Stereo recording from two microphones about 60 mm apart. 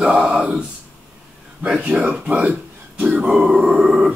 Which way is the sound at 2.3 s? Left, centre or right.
Right.